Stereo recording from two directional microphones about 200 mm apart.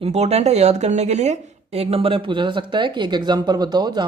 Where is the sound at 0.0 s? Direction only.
30° right (ahead or behind).